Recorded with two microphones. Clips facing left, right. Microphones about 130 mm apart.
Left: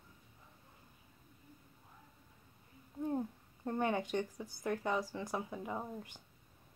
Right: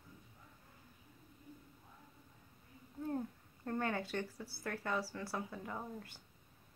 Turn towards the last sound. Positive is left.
turn(degrees=15)  # may be behind; listen again after turning